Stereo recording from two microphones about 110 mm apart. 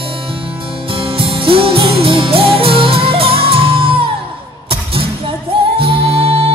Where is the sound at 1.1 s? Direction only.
55° right (ahead or behind).